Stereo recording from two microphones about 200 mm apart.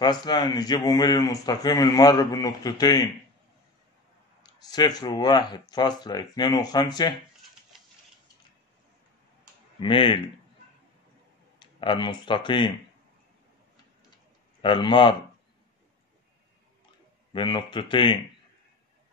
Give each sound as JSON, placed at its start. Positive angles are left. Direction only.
{"t": 0.0, "sound": "speech", "side_deg": 20}
{"t": 4.4, "sound": "speech", "side_deg": 20}
{"t": 9.8, "sound": "speech", "side_deg": 25}
{"t": 11.6, "sound": "speech", "side_deg": 25}
{"t": 14.6, "sound": "speech", "side_deg": 25}
{"t": 17.3, "sound": "speech", "side_deg": 25}